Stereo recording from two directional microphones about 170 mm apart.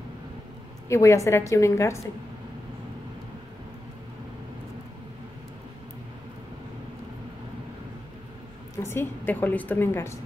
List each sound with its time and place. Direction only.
0.8 s a woman's voice: 15° left (ahead or behind)
8.7 s a woman's voice: 15° left (ahead or behind)